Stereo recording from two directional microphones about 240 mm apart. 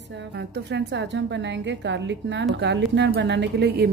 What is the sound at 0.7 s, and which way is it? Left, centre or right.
Speech, right.